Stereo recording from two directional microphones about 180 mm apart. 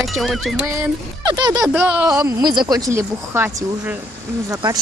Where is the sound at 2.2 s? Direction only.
25° right (ahead or behind).